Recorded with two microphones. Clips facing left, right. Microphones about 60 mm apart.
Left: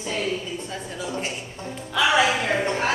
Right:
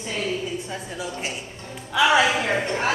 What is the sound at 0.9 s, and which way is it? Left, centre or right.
A woman's voice, centre.